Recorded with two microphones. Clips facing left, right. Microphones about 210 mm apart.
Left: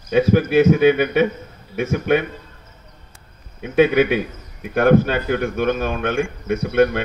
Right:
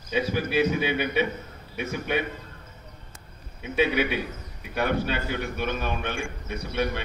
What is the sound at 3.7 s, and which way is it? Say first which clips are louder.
A man's voice: left 9 dB; 50° left (ahead or behind).